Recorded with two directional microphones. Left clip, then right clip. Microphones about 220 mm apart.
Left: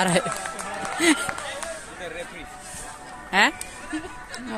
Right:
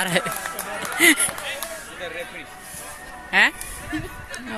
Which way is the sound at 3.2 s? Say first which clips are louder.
Right 2 dB; 15° left (ahead or behind).